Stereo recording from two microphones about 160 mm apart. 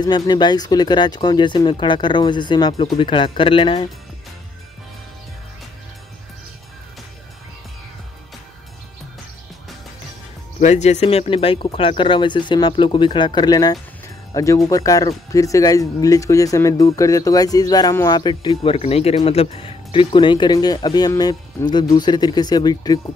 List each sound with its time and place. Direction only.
0.0 s speech: 25° left (ahead or behind)
10.6 s speech: 45° left (ahead or behind); by 22.9 s 25° left (ahead or behind)